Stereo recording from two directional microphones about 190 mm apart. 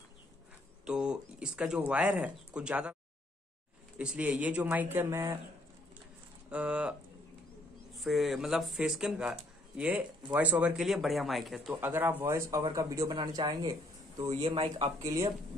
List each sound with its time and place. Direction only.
0.8 s speech: 5° right (ahead or behind)
4.0 s a man's voice: 5° right (ahead or behind)
6.5 s a man's voice: 5° right (ahead or behind)